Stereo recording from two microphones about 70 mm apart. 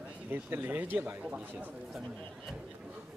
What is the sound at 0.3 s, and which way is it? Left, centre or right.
Speech, right.